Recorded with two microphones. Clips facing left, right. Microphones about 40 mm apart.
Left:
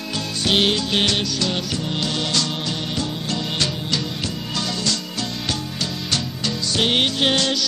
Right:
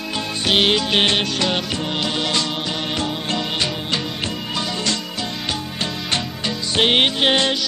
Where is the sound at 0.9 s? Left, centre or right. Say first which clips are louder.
Right 3 dB; right.